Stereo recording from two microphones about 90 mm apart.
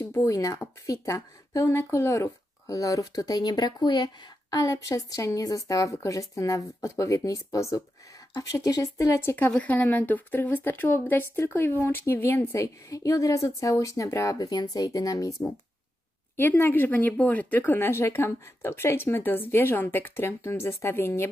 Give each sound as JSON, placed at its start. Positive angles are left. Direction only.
{"t": 0.0, "sound": "speech", "side_deg": 35}
{"t": 9.5, "sound": "speech", "side_deg": 15}
{"t": 16.3, "sound": "speech", "side_deg": 25}